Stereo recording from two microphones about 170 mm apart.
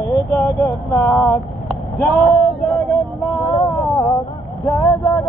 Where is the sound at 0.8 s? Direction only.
15° left (ahead or behind).